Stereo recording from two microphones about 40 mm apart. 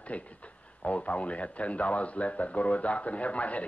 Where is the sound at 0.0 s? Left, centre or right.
Left.